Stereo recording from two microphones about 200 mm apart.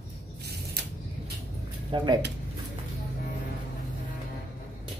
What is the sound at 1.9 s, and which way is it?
Speech, 25° right (ahead or behind).